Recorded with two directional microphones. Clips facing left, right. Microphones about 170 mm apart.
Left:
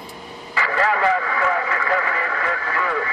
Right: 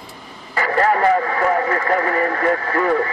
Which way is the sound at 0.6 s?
40° right (ahead or behind).